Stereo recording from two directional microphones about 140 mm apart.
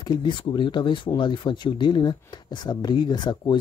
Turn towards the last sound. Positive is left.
turn(degrees=30)  # may be behind; listen again after turning